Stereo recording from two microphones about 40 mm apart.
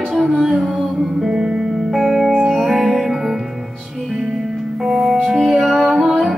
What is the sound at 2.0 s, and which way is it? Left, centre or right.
Music, centre.